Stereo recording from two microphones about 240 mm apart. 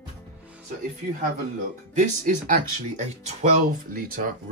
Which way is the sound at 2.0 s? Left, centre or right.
Right.